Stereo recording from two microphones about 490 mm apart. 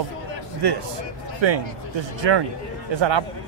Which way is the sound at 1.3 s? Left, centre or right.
Right.